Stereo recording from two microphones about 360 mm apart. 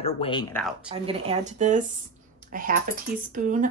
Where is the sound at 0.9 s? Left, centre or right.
Centre.